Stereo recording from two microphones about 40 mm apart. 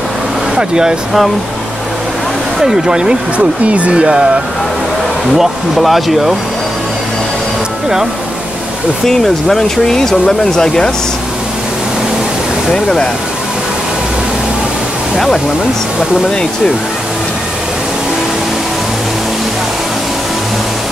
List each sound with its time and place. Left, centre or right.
0.6 s speech: centre
2.6 s speech: centre
3.3 s speech: right
5.3 s speech: centre
9.0 s speech: centre
12.7 s speech: centre
15.1 s speech: centre